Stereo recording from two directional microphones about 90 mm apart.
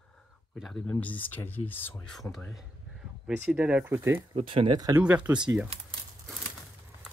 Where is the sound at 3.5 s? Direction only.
15° right (ahead or behind).